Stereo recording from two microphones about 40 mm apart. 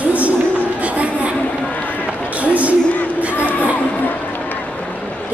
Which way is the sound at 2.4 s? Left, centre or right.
Right.